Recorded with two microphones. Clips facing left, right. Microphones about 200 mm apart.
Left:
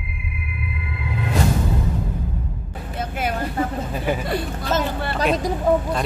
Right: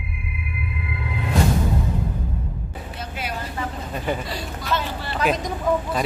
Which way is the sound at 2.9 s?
50° left (ahead or behind).